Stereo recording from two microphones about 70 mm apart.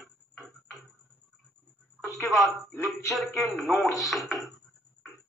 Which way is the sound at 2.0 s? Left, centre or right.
Left.